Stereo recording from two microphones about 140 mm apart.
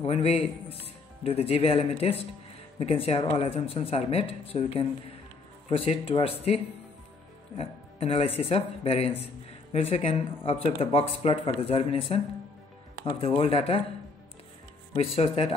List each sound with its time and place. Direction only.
0.0 s speech: 45° left (ahead or behind)
13.4 s speech: 45° left (ahead or behind)
15.1 s speech: 45° left (ahead or behind)